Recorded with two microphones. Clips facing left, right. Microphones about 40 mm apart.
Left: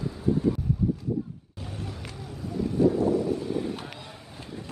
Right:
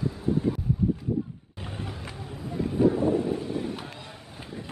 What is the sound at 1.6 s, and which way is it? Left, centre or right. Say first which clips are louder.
Vehicle: right 1 dB; right.